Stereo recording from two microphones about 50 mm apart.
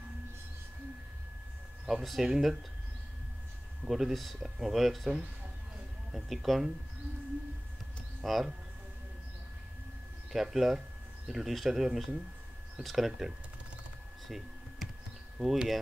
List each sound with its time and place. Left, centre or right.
1.9 s speech: centre
3.8 s speech: centre
8.2 s speech: centre
10.3 s speech: centre
14.2 s computer keyboard: centre
15.3 s speech: centre